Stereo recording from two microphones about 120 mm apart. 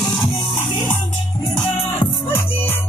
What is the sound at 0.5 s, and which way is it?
Music, 40° left (ahead or behind).